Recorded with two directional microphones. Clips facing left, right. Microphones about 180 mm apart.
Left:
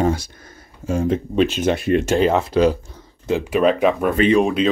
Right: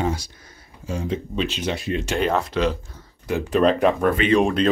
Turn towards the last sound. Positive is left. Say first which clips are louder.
# left 2 dB
turn(degrees=0)  # may be behind; listen again after turning